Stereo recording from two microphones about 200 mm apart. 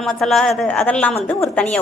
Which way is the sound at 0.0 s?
Centre (ahead or behind).